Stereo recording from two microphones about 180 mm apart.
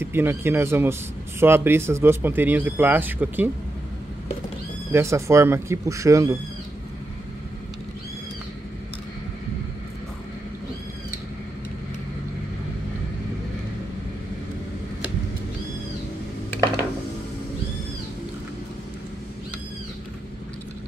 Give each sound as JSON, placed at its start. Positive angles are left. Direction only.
{"t": 0.0, "sound": "speech", "side_deg": -10}
{"t": 4.9, "sound": "speech", "side_deg": -15}